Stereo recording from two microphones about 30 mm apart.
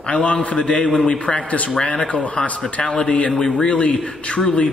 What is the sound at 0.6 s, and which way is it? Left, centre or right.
Speech, left.